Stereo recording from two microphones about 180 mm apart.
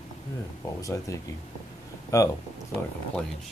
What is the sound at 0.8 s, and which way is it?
Speech, 20° left (ahead or behind).